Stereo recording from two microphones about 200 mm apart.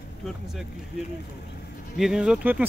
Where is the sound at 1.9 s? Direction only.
Centre (ahead or behind).